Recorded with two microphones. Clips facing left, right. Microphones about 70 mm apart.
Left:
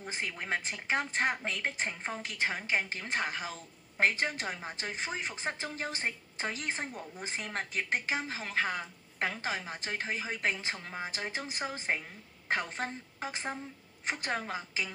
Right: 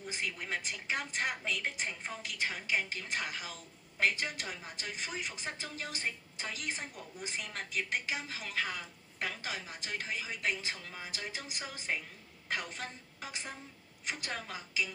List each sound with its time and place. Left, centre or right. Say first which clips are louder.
0.0 s a woman's voice: left 2 dB; left